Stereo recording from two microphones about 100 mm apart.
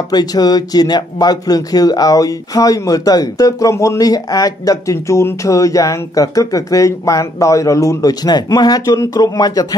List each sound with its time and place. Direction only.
0.1 s speech: 40° left (ahead or behind)